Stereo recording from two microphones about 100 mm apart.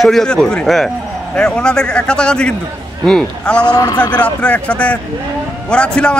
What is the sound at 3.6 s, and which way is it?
Speech, 45° left (ahead or behind).